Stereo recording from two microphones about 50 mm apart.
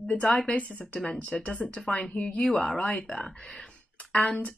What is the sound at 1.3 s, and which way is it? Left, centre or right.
Speech, left.